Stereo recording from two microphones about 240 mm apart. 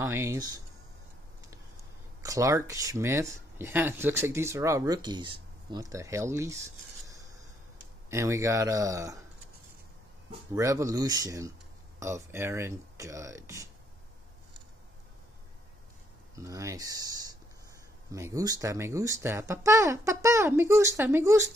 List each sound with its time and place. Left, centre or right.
0.0 s speech: centre
2.2 s speech: centre
8.1 s speech: centre
10.5 s speech: centre
16.3 s speech: centre